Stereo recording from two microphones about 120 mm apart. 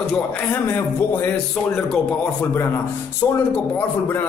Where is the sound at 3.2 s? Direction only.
25° left (ahead or behind).